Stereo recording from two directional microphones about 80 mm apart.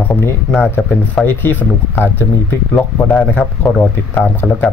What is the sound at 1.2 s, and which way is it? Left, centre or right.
Speech, left.